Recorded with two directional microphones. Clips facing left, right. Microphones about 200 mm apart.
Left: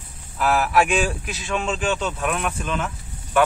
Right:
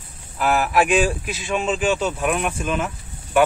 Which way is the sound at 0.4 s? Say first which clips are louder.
Even; centre (ahead or behind).